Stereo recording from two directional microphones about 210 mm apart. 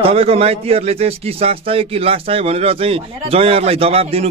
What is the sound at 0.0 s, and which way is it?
A man's voice, 30° right (ahead or behind).